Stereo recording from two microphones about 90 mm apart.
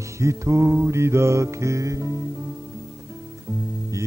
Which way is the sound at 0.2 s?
35° right (ahead or behind).